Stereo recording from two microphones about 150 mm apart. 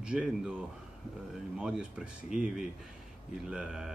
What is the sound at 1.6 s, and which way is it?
Speech, 5° right (ahead or behind).